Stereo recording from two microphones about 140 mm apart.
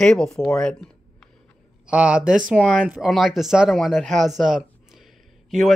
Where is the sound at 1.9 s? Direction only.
5° right (ahead or behind).